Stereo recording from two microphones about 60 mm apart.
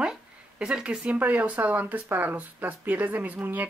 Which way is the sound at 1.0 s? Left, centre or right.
Right.